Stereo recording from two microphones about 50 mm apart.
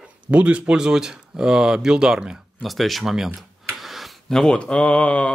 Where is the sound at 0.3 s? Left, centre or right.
Right.